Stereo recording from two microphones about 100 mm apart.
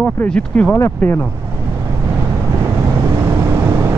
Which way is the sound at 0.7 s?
25° left (ahead or behind).